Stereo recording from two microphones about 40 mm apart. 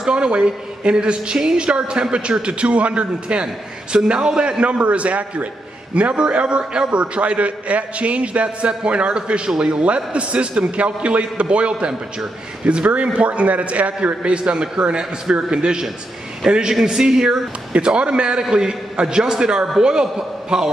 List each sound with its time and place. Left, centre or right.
0.0 s a woman's voice: right
17.7 s a woman's voice: right